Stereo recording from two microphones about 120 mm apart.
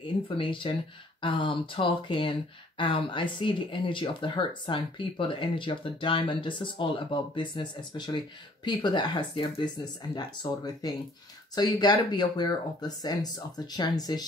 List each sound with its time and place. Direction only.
0.0 s speech: 45° left (ahead or behind)